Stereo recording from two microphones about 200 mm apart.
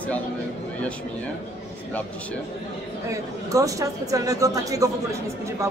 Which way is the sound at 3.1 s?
15° right (ahead or behind).